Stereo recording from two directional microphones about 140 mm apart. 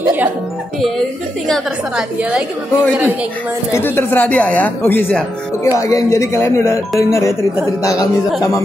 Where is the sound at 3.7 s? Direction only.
15° left (ahead or behind).